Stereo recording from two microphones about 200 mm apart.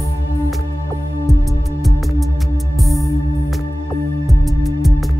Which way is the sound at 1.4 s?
Centre (ahead or behind).